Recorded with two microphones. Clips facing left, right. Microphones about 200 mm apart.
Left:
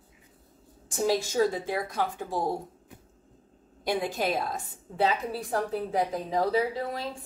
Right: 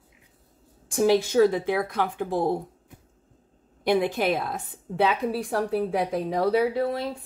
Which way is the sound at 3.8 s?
60° right (ahead or behind).